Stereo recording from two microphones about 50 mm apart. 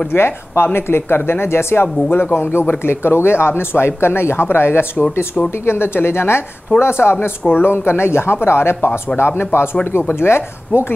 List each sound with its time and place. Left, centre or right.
0.1 s speech: left
2.9 s speech: left